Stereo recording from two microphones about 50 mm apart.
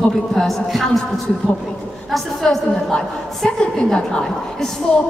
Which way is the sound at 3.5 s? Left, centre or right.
Centre.